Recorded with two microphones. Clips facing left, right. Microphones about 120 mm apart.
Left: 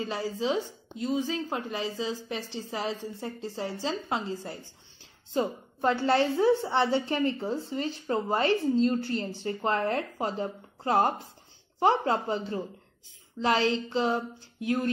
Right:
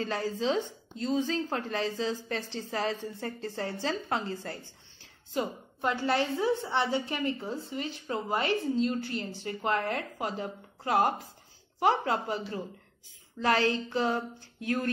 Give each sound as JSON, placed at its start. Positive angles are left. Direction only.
{"t": 0.0, "sound": "a woman's voice", "side_deg": 15}
{"t": 5.3, "sound": "a woman's voice", "side_deg": 30}